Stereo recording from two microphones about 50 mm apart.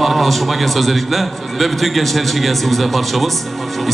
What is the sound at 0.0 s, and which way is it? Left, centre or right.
A man's voice, centre.